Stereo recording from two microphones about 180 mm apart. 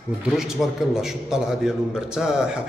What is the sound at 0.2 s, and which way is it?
A man's voice, centre (ahead or behind).